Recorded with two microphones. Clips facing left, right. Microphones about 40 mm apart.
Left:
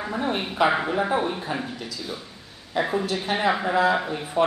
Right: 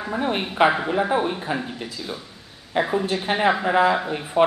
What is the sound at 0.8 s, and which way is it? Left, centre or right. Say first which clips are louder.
Speech: right 2 dB; centre.